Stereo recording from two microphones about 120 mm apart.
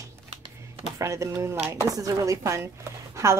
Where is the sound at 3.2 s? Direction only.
25° right (ahead or behind).